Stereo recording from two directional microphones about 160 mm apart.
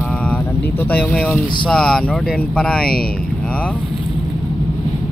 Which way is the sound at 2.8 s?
70° left (ahead or behind).